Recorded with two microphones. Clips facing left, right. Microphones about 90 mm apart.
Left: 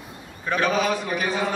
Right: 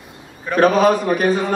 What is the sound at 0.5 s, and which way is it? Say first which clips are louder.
A man's voice: right 9 dB; 40° right (ahead or behind).